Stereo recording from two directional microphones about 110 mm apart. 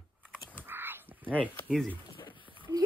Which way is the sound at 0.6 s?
20° right (ahead or behind).